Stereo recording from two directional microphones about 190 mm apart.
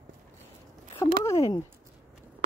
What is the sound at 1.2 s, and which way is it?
Speech, 15° left (ahead or behind).